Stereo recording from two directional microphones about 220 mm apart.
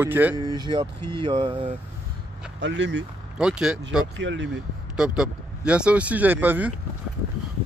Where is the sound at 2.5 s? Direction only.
55° right (ahead or behind).